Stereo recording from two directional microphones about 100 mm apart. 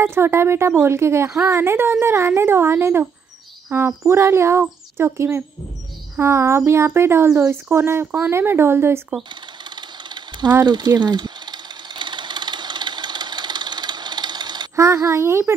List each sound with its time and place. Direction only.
0.0 s speech: 25° right (ahead or behind)
9.8 s sewing machine: 50° right (ahead or behind)
10.6 s engine: 45° right (ahead or behind)
14.8 s speech: 30° right (ahead or behind)